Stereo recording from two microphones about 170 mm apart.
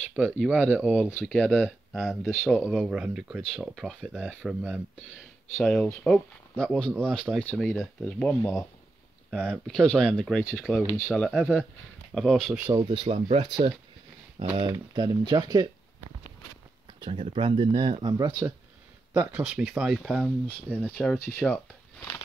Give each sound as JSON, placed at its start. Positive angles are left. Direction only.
{"t": 0.4, "sound": "speech", "side_deg": -5}
{"t": 1.2, "sound": "speech", "side_deg": 5}
{"t": 10.8, "sound": "speech", "side_deg": 15}
{"t": 11.1, "sound": "speech", "side_deg": 0}
{"t": 12.7, "sound": "speech", "side_deg": -25}
{"t": 17.0, "sound": "speech", "side_deg": -30}
{"t": 18.1, "sound": "speech", "side_deg": -20}
{"t": 19.1, "sound": "speech", "side_deg": -5}